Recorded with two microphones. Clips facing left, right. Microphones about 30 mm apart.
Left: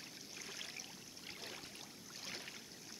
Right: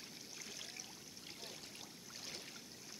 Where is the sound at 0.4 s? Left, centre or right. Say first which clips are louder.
Left 3 dB; centre.